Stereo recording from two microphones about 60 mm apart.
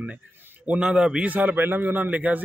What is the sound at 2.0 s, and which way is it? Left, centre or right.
Speech, right.